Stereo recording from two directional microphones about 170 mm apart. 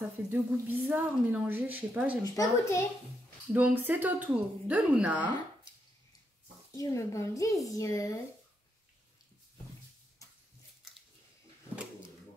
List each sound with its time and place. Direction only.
0.3 s a woman's voice: 10° right (ahead or behind)
2.2 s speech: 20° left (ahead or behind)
3.5 s a woman's voice: 10° right (ahead or behind)
6.7 s speech: 20° left (ahead or behind)